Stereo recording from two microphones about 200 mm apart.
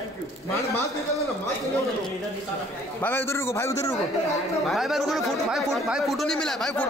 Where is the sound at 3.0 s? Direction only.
10° left (ahead or behind).